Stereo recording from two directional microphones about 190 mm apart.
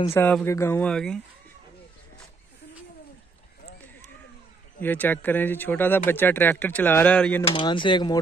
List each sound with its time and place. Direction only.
0.1 s speech: 10° left (ahead or behind)
4.7 s speech: 10° left (ahead or behind)
7.4 s speech: 25° left (ahead or behind)